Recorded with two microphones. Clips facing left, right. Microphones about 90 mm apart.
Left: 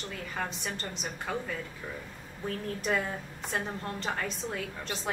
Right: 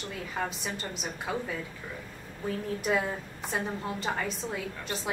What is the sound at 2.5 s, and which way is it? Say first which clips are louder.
A woman's voice: right 2 dB; 10° right (ahead or behind).